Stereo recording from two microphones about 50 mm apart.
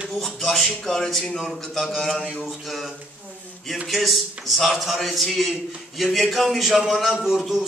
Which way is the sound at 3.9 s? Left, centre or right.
Centre.